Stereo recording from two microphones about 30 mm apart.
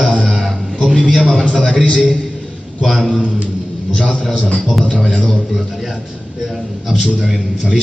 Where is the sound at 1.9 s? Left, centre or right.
Centre.